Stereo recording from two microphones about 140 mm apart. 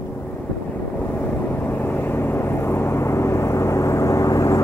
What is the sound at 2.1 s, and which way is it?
Vehicle, 15° left (ahead or behind).